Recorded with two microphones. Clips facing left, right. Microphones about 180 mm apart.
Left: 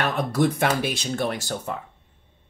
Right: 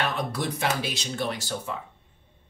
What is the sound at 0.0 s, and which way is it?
Speech, 50° left (ahead or behind).